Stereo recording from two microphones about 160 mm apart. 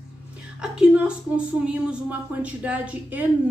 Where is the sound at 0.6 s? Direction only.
5° right (ahead or behind).